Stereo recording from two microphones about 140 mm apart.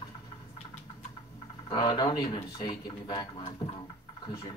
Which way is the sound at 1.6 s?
30° left (ahead or behind).